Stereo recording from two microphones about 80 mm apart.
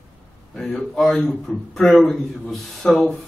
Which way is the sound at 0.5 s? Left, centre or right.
Centre.